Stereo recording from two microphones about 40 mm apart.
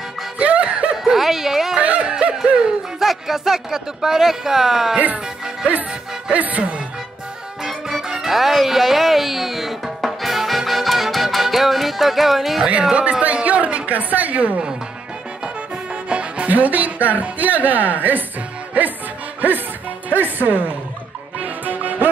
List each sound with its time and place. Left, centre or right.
0.4 s music: right
1.0 s speech: centre
1.8 s speech: right
2.0 s yodeling: right
2.4 s speech: right
3.0 s speech: centre
4.9 s a woman's voice: right
6.3 s a woman's voice: right
7.6 s music: centre
13.2 s a woman's voice: right
16.1 s music: right
16.4 s a woman's voice: right
20.1 s a woman's voice: right
21.6 s music: right